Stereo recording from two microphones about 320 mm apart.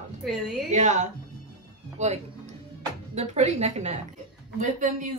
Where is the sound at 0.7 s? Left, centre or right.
Right.